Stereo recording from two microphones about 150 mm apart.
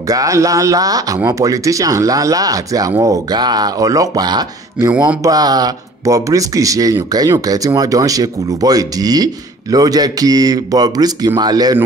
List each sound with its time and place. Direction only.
0.1 s speech: 20° right (ahead or behind)